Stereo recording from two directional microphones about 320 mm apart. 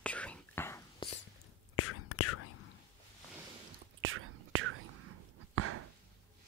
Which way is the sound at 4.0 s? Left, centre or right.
Right.